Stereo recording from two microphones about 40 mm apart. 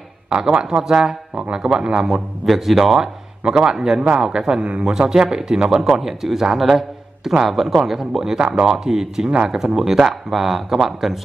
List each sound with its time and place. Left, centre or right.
0.4 s speech: centre
2.4 s speech: centre
3.4 s speech: right
5.9 s speech: centre
9.3 s speech: right
9.8 s speech: centre